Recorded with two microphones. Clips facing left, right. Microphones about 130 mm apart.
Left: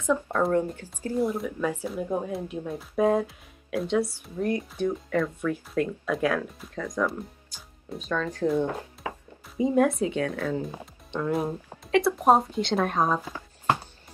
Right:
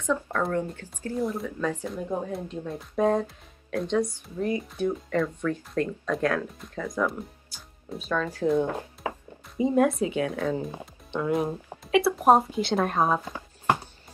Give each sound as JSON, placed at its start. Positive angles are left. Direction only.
{"t": 0.0, "sound": "speech", "side_deg": 15}
{"t": 9.0, "sound": "music", "side_deg": -30}
{"t": 9.6, "sound": "speech", "side_deg": 0}
{"t": 10.3, "sound": "speech", "side_deg": -25}
{"t": 11.1, "sound": "speech", "side_deg": -5}